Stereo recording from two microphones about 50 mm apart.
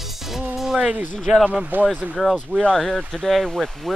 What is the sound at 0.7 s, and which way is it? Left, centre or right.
Speech, right.